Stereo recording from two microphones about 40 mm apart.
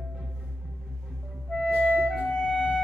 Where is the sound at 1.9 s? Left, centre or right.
Centre.